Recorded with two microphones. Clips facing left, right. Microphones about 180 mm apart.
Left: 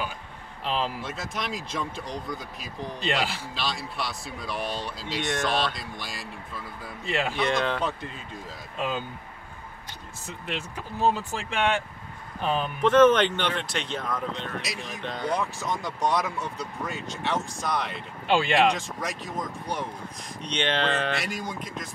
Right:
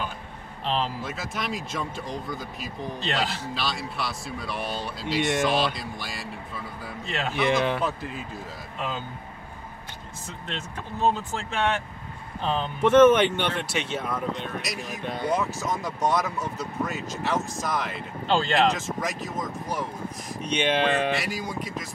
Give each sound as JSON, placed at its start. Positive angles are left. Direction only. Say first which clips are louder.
{"t": 1.0, "sound": "speech", "louder": "right 1 dB", "side_deg": 0}
{"t": 7.1, "sound": "speech", "louder": "left 3 dB", "side_deg": 15}
{"t": 7.3, "sound": "speech", "louder": "right 6 dB", "side_deg": -5}
{"t": 8.7, "sound": "speech", "louder": "left 3 dB", "side_deg": 15}
{"t": 10.4, "sound": "speech", "louder": "left 2 dB", "side_deg": 10}
{"t": 12.8, "sound": "speech", "louder": "right 2 dB", "side_deg": -10}
{"t": 18.2, "sound": "speech", "louder": "left 1 dB", "side_deg": 10}
{"t": 18.7, "sound": "speech", "louder": "right 1 dB", "side_deg": 0}
{"t": 21.1, "sound": "speech", "louder": "right 2 dB", "side_deg": 0}